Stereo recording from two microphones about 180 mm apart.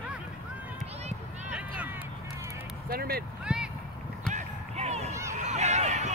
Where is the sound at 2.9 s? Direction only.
55° right (ahead or behind).